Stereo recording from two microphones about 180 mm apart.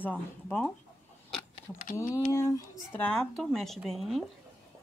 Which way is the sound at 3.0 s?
5° left (ahead or behind).